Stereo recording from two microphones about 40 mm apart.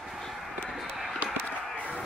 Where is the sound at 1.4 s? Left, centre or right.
Left.